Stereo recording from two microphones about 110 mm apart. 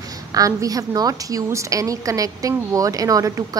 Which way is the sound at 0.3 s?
30° right (ahead or behind).